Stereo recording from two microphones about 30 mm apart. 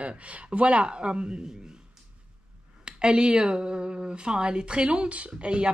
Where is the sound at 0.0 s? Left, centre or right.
Right.